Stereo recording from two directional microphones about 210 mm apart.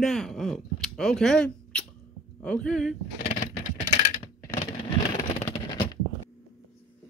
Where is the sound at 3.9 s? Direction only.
35° left (ahead or behind).